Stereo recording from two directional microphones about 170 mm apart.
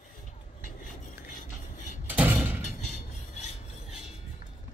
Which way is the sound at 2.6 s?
45° left (ahead or behind).